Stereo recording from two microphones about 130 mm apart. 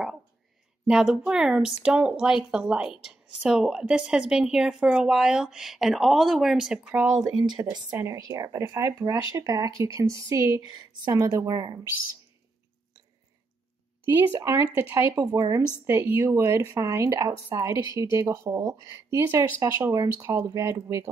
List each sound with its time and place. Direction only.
0.8 s a woman's voice: 5° right (ahead or behind)
7.5 s speech: 35° right (ahead or behind)
14.1 s speech: 20° right (ahead or behind)
15.9 s speech: 15° right (ahead or behind)